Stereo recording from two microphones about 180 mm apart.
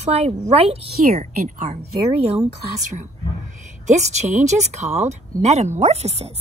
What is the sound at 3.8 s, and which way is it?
Speech, 40° right (ahead or behind).